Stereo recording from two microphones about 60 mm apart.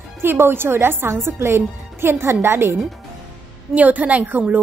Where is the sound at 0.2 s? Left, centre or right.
Right.